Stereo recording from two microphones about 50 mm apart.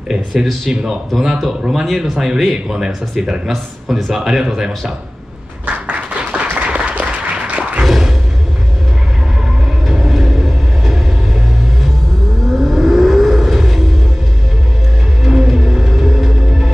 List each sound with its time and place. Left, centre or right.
0.1 s speech: centre
5.9 s applause: right
7.8 s music: centre
9.8 s train: centre
12.5 s vehicle: centre
15.2 s music: centre